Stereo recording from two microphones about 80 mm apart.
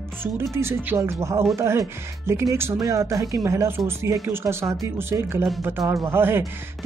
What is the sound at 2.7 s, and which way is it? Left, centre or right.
Speech, right.